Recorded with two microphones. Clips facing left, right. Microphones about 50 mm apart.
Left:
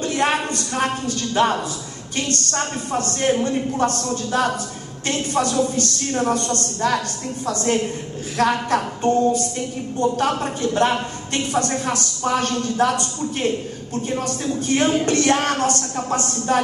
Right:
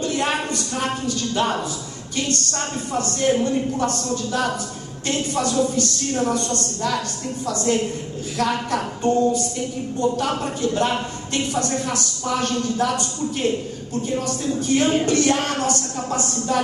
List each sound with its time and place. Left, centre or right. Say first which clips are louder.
0.0 s a sound: left 2 dB; left
1.0 s a woman's voice: left 3 dB; left
8.4 s a man's voice: left 3 dB; left